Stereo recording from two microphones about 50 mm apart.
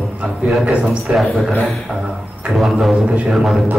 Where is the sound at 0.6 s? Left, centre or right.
Right.